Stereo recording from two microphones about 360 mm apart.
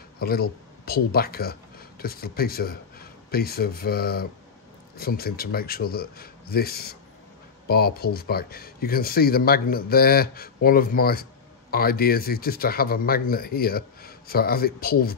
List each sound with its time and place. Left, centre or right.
0.2 s speech: left